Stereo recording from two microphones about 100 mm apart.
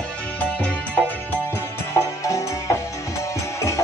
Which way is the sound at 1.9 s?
30° left (ahead or behind).